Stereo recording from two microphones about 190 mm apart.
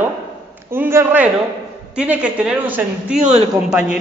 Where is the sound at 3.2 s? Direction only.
40° right (ahead or behind).